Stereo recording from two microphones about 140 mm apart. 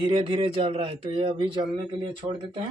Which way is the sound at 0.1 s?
45° right (ahead or behind).